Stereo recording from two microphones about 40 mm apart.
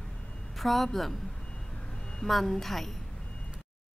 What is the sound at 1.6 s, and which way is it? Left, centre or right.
Reversing beeps, centre.